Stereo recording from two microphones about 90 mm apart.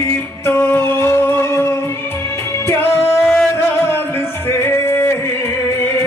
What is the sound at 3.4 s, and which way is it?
Music, 25° left (ahead or behind).